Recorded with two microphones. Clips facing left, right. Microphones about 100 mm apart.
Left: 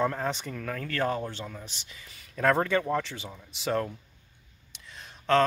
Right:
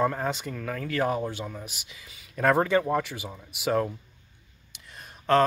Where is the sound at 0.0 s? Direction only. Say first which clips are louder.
Right 2 dB; 5° right (ahead or behind).